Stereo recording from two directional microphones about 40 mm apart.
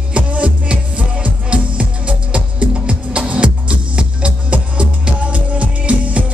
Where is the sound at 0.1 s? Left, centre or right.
Right.